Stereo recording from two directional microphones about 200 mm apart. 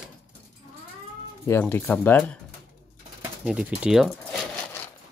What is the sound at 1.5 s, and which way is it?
Speech, 10° left (ahead or behind).